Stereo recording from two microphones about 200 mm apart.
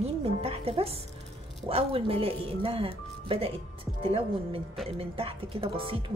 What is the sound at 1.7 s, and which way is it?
Speech, 30° right (ahead or behind).